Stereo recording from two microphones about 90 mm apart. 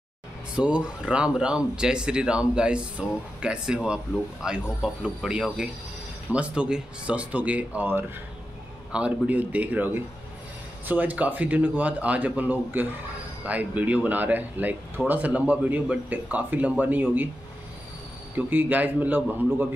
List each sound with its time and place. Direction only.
0.6 s speech: 10° right (ahead or behind)
18.3 s speech: 20° right (ahead or behind)